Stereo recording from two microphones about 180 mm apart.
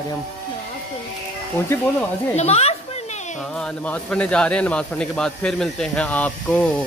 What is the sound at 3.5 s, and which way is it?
Speech, 5° left (ahead or behind).